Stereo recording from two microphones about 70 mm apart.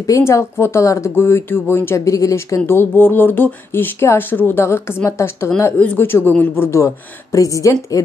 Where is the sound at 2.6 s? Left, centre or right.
Left.